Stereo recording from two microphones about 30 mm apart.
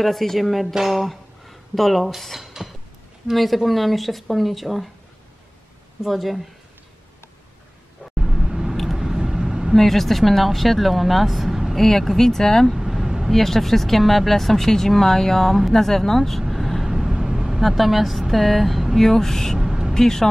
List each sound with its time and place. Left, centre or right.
0.0 s speech: centre
0.9 s a sound: centre
2.2 s speech: centre
6.0 s speech: centre
8.2 s vehicle: centre
9.8 s speech: centre
11.7 s speech: centre
12.7 s vehicle: centre
13.3 s speech: centre
16.5 s vehicle: centre
16.8 s vehicle: centre
17.6 s speech: centre
18.9 s speech: centre